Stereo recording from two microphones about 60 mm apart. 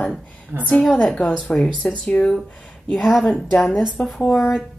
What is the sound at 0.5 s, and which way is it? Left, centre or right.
Speech, right.